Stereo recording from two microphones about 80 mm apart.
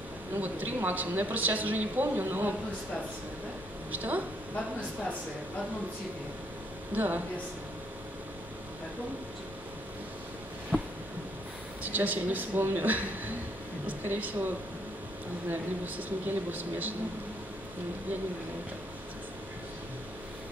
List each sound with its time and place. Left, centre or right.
0.4 s speech: right
3.9 s speech: right
6.9 s speech: right
10.7 s a sound: centre
11.8 s speech: right
15.5 s speech: right